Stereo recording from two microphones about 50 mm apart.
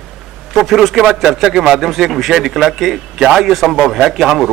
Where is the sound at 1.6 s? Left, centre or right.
Centre.